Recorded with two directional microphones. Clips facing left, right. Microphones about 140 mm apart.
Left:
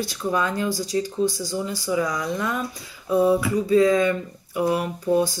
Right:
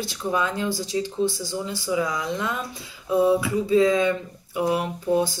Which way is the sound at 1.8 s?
5° right (ahead or behind).